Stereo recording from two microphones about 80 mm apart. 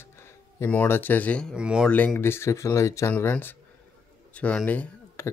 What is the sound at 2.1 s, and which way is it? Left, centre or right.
Speech, left.